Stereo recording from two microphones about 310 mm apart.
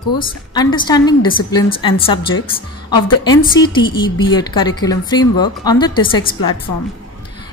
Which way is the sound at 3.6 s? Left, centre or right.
Centre.